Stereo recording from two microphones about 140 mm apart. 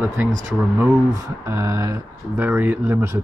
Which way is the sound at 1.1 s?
20° right (ahead or behind).